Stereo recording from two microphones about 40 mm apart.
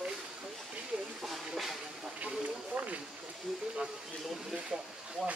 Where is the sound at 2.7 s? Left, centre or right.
Right.